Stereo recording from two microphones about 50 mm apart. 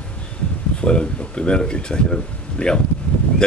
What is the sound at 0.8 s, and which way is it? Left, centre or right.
Speech, left.